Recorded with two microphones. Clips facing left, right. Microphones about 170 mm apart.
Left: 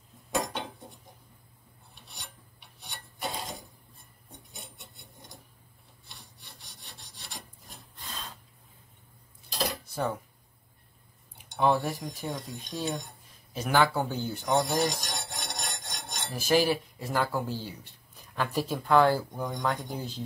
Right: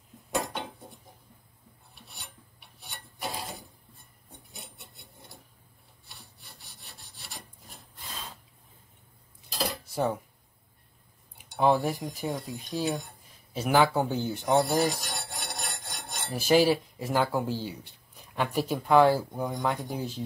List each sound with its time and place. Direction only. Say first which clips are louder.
0.3 s dishes: even; centre (ahead or behind)
2.0 s filing: even; centre (ahead or behind)
4.6 s rub: right 1 dB; centre (ahead or behind)
9.5 s cutlery: even; 5° right (ahead or behind)
11.5 s cutlery: right 2 dB; 10° right (ahead or behind)
13.7 s speech: right 2 dB; 15° right (ahead or behind)
14.6 s filing: right 2 dB; 5° right (ahead or behind)
16.3 s speech: right 3 dB; 10° right (ahead or behind)